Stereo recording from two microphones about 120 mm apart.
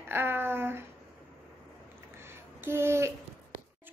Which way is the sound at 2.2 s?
20° right (ahead or behind).